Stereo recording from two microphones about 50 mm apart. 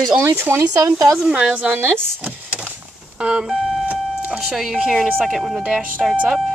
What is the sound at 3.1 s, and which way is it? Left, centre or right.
Telephone dialing, right.